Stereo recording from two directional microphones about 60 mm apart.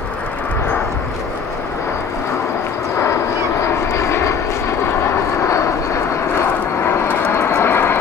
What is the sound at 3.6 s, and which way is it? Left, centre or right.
Vehicle, left.